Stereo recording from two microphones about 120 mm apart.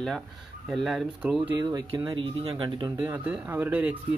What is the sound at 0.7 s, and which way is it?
Speech, centre (ahead or behind).